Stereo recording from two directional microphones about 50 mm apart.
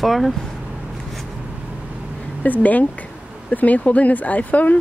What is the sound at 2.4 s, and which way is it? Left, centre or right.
Speech, left.